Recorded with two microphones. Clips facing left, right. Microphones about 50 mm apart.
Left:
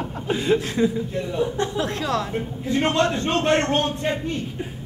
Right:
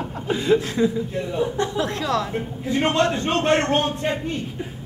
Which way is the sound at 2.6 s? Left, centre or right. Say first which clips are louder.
Right 1 dB; centre.